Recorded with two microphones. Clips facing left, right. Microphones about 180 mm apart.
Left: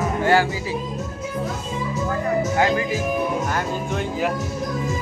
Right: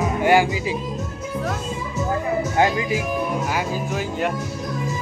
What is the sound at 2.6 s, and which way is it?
Music, 20° right (ahead or behind).